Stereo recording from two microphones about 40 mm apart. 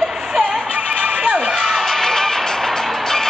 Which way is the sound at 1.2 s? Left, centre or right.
Right.